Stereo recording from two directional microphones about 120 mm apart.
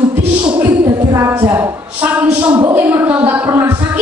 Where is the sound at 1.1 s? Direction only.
25° right (ahead or behind).